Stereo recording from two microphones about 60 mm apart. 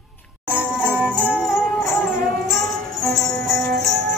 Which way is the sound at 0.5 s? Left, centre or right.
Right.